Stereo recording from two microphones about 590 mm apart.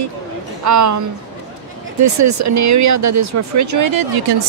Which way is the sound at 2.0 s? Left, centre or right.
Right.